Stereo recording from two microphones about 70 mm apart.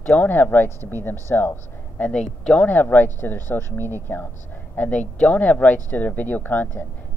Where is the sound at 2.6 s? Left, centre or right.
Left.